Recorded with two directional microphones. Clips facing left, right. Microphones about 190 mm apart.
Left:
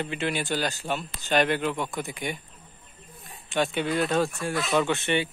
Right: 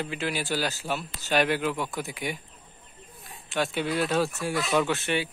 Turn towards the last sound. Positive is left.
turn(degrees=-5)  # may be behind; listen again after turning